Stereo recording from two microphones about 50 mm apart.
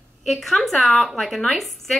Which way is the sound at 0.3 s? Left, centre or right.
Centre.